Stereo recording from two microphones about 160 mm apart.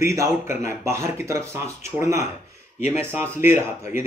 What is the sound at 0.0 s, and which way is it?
Speech, 20° right (ahead or behind).